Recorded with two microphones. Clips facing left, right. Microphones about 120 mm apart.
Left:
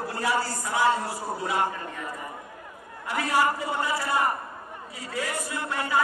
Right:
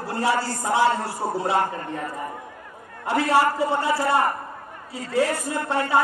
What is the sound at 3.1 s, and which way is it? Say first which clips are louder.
Speech: right 5 dB; 30° right (ahead or behind).